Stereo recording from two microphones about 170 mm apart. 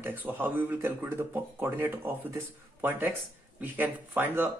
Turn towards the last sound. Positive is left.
turn(degrees=-10)  # may be behind; listen again after turning